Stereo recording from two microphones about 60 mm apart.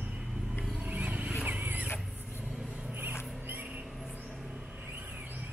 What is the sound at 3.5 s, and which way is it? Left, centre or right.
Mouse, right.